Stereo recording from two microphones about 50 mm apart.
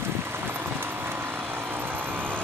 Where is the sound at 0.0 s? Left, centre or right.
Right.